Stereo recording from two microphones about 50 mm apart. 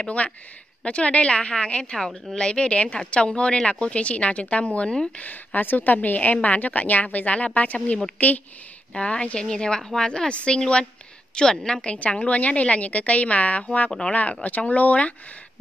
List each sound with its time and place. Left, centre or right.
0.0 s a woman's voice: left
5.1 s a woman's voice: left
14.1 s a woman's voice: left